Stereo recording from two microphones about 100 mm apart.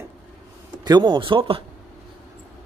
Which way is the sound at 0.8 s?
45° right (ahead or behind).